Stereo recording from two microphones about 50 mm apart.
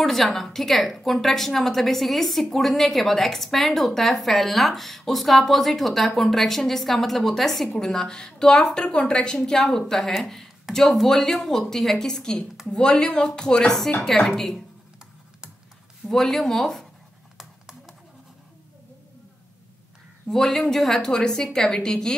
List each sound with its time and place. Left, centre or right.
0.0 s a woman's voice: centre
16.1 s a woman's voice: centre
17.4 s computer keyboard: centre
20.2 s a woman's voice: centre